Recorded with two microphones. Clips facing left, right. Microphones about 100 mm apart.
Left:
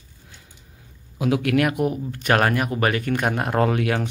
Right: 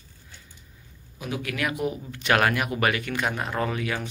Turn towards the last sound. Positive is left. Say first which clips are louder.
# left 7 dB
turn(degrees=65)  # may be behind; listen again after turning